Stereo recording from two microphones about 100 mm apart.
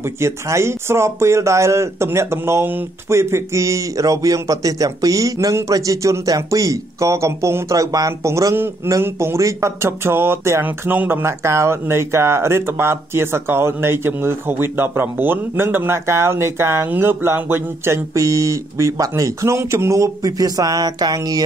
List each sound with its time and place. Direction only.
0.0 s speech: 25° right (ahead or behind)